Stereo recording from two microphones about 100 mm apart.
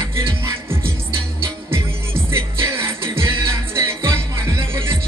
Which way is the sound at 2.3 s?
25° right (ahead or behind).